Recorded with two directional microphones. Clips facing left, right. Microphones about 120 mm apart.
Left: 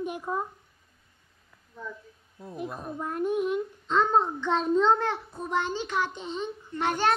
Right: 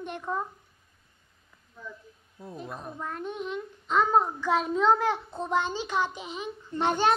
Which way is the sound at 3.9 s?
10° right (ahead or behind).